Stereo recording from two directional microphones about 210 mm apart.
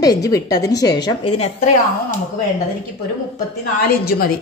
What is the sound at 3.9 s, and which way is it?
Speech, 45° left (ahead or behind).